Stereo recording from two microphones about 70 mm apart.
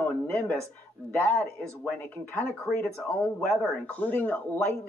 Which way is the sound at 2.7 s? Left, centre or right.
Centre.